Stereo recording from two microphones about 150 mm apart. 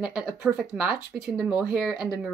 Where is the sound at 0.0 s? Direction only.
Centre (ahead or behind).